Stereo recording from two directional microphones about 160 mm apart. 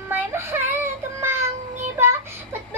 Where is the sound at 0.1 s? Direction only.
15° right (ahead or behind).